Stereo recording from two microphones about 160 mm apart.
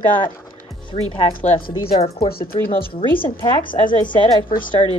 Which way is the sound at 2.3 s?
70° left (ahead or behind).